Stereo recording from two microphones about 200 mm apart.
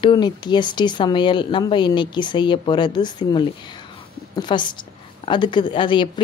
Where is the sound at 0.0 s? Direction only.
20° left (ahead or behind).